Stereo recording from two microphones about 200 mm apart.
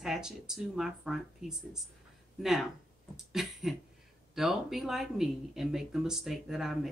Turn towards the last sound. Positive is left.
turn(degrees=0)  # may be behind; listen again after turning